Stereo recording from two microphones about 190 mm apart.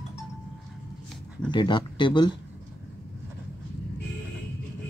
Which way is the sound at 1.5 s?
25° left (ahead or behind).